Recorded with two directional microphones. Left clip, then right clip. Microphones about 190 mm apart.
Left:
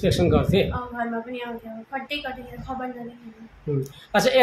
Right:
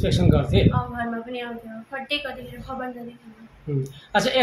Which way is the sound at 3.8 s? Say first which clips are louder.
Left 1 dB; 25° left (ahead or behind).